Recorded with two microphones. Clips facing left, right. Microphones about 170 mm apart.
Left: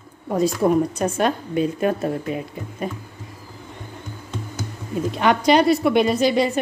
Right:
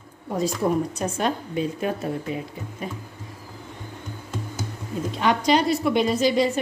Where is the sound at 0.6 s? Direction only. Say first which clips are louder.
Left 5 dB; 55° left (ahead or behind).